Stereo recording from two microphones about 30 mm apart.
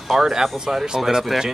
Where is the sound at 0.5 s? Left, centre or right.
Right.